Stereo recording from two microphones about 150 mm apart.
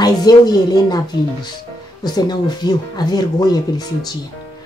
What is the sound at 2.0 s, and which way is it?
A woman's voice, 25° left (ahead or behind).